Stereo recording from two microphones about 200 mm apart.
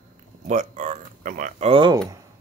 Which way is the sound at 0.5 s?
35° right (ahead or behind).